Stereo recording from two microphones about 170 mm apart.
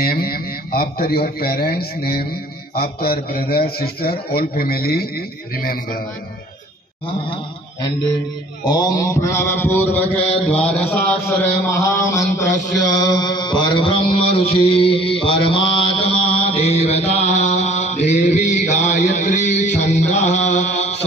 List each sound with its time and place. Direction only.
0.0 s a man's voice: 65° left (ahead or behind)
8.6 s mantra: 25° left (ahead or behind); by 21.0 s 40° left (ahead or behind)